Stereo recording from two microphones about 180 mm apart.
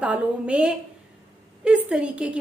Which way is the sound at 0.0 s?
5° right (ahead or behind).